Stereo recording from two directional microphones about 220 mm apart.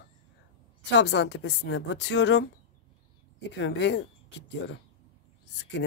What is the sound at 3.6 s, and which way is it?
Speech, 55° left (ahead or behind).